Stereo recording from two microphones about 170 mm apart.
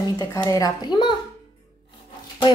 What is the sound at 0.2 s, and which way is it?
Speech, 20° left (ahead or behind).